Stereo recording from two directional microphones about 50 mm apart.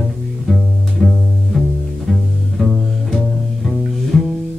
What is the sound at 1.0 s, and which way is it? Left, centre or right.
Music, centre.